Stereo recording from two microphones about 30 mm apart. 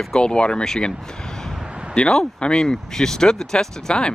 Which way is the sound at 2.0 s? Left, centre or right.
Left.